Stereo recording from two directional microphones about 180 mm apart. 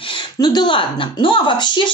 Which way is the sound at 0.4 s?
25° left (ahead or behind).